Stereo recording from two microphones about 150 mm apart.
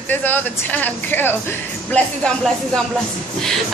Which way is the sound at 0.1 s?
10° left (ahead or behind).